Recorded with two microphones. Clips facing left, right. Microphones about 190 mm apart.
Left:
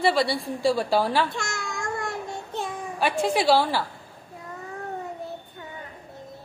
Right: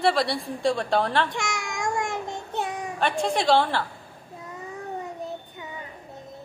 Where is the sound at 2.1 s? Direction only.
65° right (ahead or behind).